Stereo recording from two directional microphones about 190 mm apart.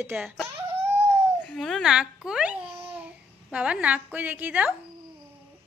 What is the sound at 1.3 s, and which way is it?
Babbling, 5° left (ahead or behind).